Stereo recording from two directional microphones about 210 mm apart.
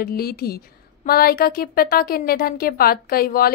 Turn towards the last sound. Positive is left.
turn(degrees=45)  # may be behind; listen again after turning